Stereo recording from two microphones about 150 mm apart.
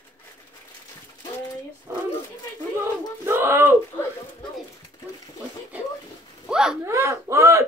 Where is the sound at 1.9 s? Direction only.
15° right (ahead or behind).